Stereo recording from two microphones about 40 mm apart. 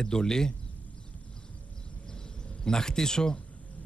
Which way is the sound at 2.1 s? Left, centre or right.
Centre.